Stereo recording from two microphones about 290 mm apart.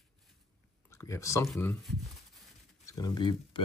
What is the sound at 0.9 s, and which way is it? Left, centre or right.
Speech, centre.